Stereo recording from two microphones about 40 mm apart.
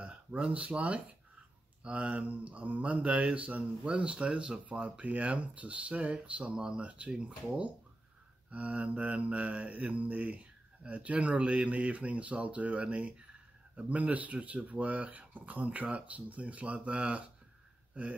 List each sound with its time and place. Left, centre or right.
0.0 s speech: right
8.5 s speech: right